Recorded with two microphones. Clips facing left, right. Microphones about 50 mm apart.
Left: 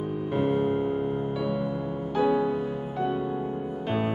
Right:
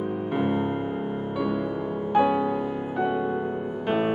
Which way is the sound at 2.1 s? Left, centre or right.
Centre.